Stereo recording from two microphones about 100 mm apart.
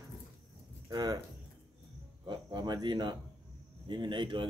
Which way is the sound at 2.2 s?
50° right (ahead or behind).